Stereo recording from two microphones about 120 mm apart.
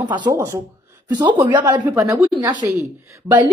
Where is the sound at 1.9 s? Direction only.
25° right (ahead or behind).